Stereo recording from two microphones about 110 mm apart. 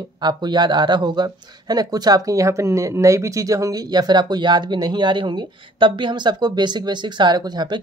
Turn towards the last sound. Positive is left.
turn(degrees=-40)  # may be behind; listen again after turning